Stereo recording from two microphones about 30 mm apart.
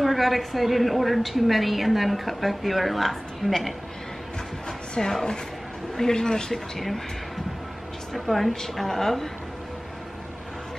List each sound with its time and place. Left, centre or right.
0.0 s a woman's voice: centre
5.0 s a woman's voice: centre
6.5 s a woman's voice: centre
8.1 s a woman's voice: centre